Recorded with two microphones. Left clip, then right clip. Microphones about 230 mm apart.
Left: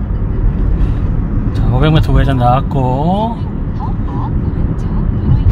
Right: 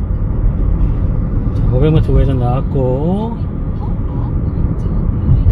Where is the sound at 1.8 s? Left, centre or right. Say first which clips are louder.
Even; left.